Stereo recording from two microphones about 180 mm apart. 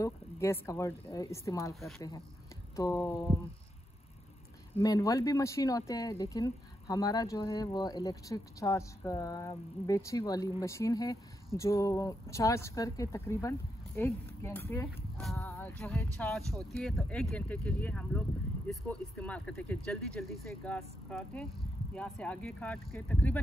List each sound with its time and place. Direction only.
0.0 s speech: 15° left (ahead or behind)
1.7 s speech: centre (ahead or behind)
2.0 s speech: 20° left (ahead or behind)
4.7 s speech: 20° left (ahead or behind)